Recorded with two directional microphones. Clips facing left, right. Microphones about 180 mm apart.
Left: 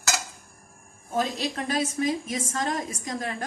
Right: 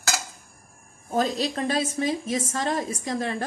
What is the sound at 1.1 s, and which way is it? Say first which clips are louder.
A woman's voice: right 3 dB; 35° right (ahead or behind).